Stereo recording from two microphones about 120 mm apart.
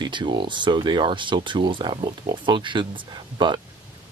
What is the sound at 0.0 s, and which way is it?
Speech, 40° right (ahead or behind).